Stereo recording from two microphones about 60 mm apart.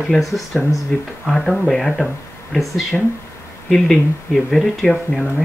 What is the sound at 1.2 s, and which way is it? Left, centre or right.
Speech, centre.